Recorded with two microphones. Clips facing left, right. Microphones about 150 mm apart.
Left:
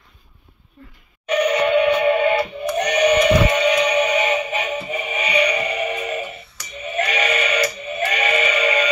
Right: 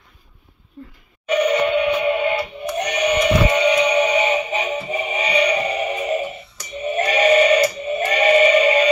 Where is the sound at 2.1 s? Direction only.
5° right (ahead or behind).